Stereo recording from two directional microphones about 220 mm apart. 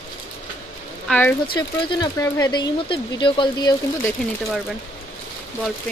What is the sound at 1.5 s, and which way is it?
Speech, 20° left (ahead or behind).